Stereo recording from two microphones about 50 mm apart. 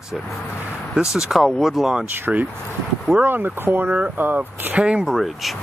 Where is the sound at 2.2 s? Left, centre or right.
Right.